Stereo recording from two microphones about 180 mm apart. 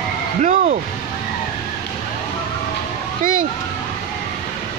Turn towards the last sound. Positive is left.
turn(degrees=-50)  # may be behind; listen again after turning